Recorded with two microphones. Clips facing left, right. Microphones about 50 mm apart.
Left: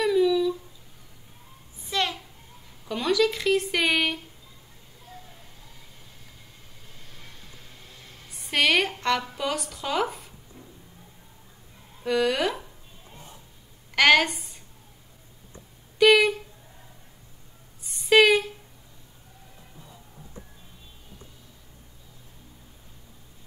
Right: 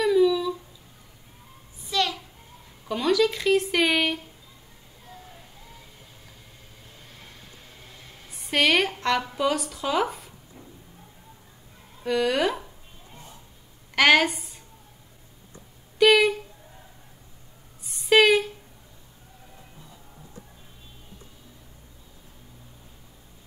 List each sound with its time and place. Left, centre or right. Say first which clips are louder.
0.0 s humming: right 1 dB; centre
1.9 s a sound: right 1 dB; left
2.9 s speech: right 1 dB; centre
8.5 s a sound: right 1 dB; centre
9.2 s speech: right 4 dB; centre
12.0 s speech: right 1 dB; centre
13.9 s a woman's voice: even; centre
16.0 s speech: even; centre
17.8 s a sound: even; centre